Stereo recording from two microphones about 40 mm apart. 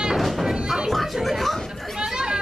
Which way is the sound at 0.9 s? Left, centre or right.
Centre.